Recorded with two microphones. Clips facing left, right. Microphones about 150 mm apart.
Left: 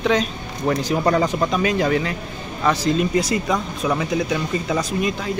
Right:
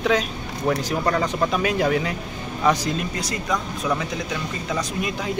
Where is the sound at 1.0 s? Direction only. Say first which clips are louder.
Left 5 dB; 15° left (ahead or behind).